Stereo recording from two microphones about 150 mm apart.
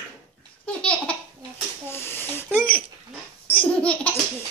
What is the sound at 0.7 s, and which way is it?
Laughter, 5° left (ahead or behind).